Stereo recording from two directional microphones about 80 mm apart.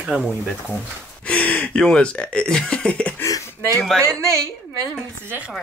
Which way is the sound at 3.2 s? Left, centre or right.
Left.